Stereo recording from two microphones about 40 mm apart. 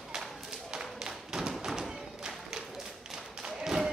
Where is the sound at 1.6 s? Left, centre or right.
Centre.